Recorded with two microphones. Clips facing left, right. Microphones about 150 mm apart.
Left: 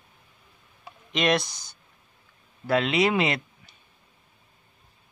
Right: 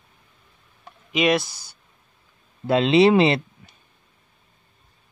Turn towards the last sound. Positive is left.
turn(degrees=-30)  # may be behind; listen again after turning